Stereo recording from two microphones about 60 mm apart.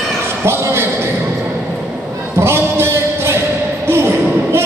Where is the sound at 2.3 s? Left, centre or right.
Right.